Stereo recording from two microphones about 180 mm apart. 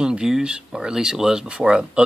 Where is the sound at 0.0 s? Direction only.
5° right (ahead or behind).